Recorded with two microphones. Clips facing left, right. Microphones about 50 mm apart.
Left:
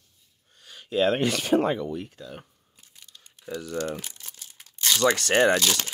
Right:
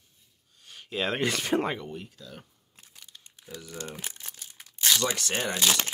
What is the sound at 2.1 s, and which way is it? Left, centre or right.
Speech, left.